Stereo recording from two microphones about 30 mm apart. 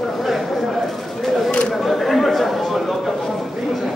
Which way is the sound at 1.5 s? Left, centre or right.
Left.